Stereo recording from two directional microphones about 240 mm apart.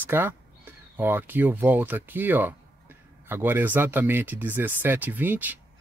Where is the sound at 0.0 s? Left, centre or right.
Centre.